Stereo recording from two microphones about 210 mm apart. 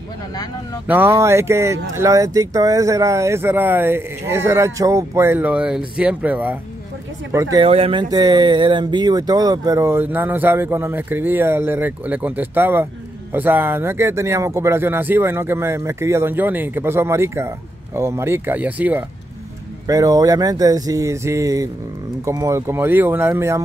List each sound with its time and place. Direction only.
0.8 s speech: 10° right (ahead or behind)
7.5 s speech: 25° right (ahead or behind); by 23.6 s 10° right (ahead or behind)